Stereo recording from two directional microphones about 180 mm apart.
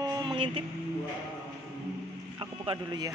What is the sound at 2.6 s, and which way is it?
Speech, 25° right (ahead or behind).